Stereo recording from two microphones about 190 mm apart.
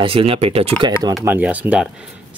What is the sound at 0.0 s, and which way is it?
Speech, 30° right (ahead or behind).